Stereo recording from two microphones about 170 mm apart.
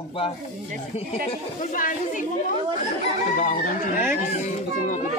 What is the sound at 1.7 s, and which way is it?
Speech, 50° left (ahead or behind).